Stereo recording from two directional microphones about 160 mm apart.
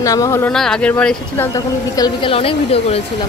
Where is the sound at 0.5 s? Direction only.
5° left (ahead or behind).